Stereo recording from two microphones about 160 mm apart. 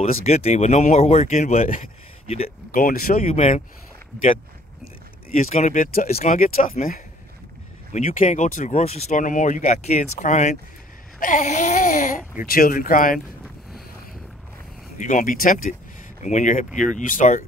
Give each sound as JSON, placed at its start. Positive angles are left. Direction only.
{"t": 0.0, "sound": "speech", "side_deg": 40}
{"t": 2.2, "sound": "speech", "side_deg": 40}
{"t": 2.7, "sound": "speech", "side_deg": 60}
{"t": 5.3, "sound": "speech", "side_deg": 45}
{"t": 15.0, "sound": "speech", "side_deg": 55}